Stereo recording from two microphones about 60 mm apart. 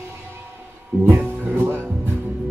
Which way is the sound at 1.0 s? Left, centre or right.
Right.